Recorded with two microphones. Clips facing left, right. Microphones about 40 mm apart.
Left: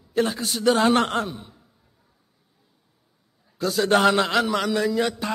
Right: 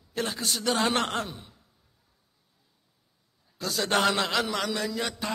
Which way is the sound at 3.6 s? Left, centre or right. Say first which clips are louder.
Left 6 dB; centre.